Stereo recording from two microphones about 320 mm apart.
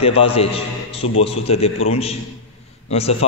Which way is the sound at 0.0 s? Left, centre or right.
Centre.